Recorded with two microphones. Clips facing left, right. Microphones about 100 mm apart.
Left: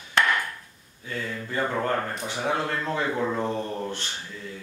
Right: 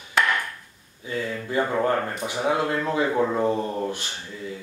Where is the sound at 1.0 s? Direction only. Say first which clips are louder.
Right 4 dB; 10° right (ahead or behind).